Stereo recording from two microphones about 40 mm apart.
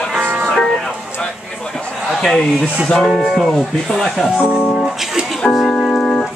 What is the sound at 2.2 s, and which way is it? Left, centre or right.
Speech, centre.